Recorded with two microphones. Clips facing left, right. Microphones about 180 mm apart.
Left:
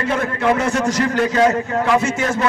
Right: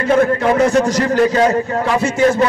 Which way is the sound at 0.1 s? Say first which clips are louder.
Right 6 dB; 40° right (ahead or behind).